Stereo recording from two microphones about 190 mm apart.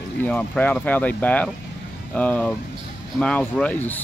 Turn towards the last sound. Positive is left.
turn(degrees=5)  # may be behind; listen again after turning